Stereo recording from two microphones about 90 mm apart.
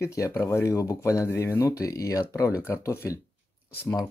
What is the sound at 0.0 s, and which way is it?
Speech, 35° left (ahead or behind).